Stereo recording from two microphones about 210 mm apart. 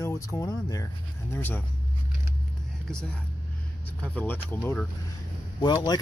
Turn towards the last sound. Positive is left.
turn(degrees=20)  # may be behind; listen again after turning